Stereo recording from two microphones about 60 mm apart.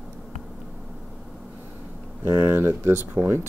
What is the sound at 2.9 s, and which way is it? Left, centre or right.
Speech, right.